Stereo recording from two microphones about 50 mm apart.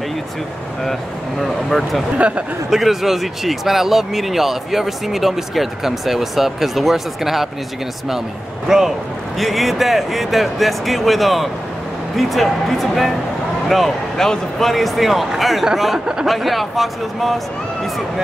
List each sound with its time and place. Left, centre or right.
1.4 s speech: centre
2.1 s a man's voice: right
2.7 s speech: centre
8.6 s speech: centre